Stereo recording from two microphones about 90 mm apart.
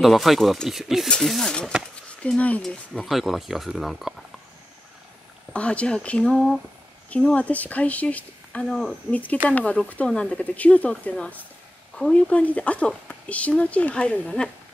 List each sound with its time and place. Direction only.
0.0 s speech: centre (ahead or behind)
5.5 s speech: 15° left (ahead or behind)
6.3 s speech: centre (ahead or behind)
7.1 s speech: 15° left (ahead or behind)
8.6 s speech: 5° left (ahead or behind)
9.1 s speech: 15° left (ahead or behind)